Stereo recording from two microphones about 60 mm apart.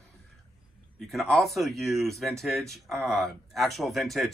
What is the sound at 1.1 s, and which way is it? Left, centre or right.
Speech, centre.